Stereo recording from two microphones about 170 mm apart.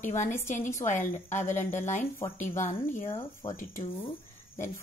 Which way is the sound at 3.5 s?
50° left (ahead or behind).